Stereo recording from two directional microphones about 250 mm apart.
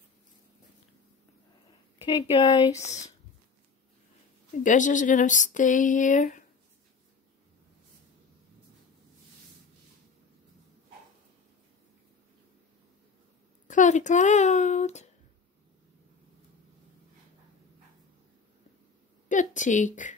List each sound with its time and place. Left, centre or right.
2.0 s speech: left
4.6 s speech: left
13.7 s a child's voice: left
19.2 s a woman's voice: left